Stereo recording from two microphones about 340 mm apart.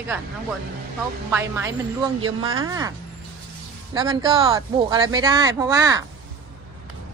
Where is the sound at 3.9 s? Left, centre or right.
Centre.